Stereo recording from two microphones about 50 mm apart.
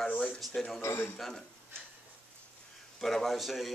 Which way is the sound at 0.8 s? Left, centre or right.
Left.